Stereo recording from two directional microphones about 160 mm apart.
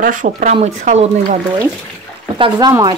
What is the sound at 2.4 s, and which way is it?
Speech, 25° right (ahead or behind).